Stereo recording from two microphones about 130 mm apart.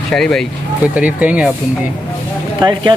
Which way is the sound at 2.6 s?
35° right (ahead or behind).